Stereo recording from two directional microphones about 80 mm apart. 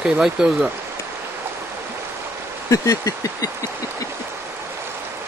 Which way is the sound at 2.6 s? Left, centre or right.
Left.